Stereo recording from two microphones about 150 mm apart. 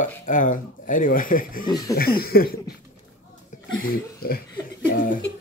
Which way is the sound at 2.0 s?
80° left.